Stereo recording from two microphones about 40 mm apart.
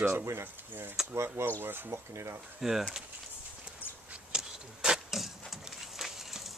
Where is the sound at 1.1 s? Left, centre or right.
Right.